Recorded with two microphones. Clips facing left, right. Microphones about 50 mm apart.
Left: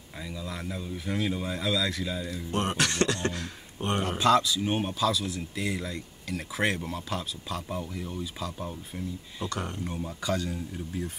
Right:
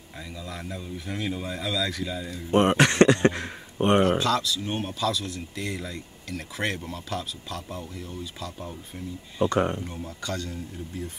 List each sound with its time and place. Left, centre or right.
0.2 s speech: centre
2.5 s speech: right
4.2 s speech: centre
9.4 s speech: right
9.8 s speech: centre